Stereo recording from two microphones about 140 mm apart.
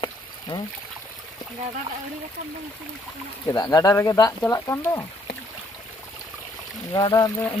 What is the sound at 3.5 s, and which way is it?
Speech, 25° left (ahead or behind).